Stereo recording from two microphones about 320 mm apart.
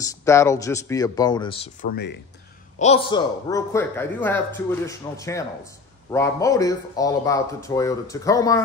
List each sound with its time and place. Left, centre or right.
0.2 s a man's voice: centre; by 2.1 s left
2.8 s a man's voice: centre